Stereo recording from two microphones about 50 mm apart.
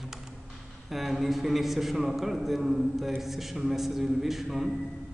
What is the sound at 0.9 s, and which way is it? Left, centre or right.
Speech, centre.